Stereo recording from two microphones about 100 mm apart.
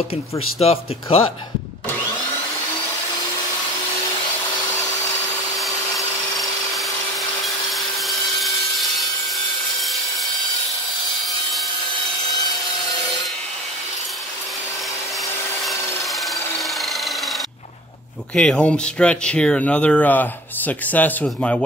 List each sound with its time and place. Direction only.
0.1 s speech: 90° left
1.1 s speech: 70° left (ahead or behind)
6.7 s wood: centre (ahead or behind)
15.6 s wood: centre (ahead or behind)
18.3 s speech: 10° left (ahead or behind)